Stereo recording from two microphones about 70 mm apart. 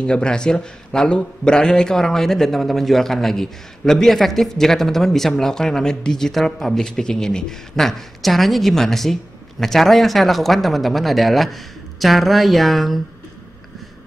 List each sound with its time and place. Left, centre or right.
0.0 s a man's voice: centre